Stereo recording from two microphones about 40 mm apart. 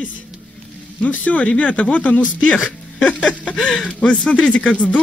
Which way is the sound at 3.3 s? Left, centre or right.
Left.